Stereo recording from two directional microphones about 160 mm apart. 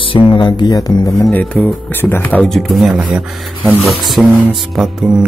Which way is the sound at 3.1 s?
Centre (ahead or behind).